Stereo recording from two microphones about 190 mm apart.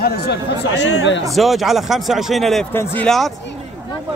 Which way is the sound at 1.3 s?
Centre (ahead or behind).